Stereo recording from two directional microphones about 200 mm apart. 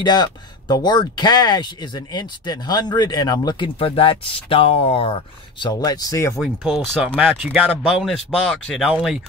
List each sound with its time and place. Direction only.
0.0 s speech: 20° left (ahead or behind)
6.4 s speech: centre (ahead or behind)